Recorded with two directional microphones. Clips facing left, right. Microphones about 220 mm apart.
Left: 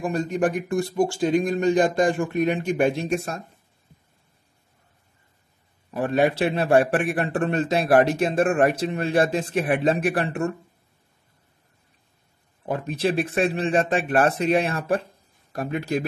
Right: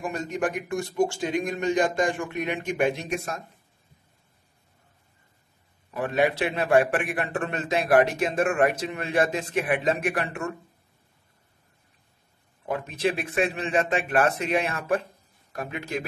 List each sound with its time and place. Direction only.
0.0 s a man's voice: 35° left (ahead or behind)
5.9 s a man's voice: 35° left (ahead or behind)
12.6 s a man's voice: 35° left (ahead or behind)